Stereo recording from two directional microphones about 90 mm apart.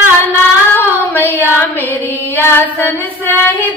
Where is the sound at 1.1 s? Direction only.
25° left (ahead or behind).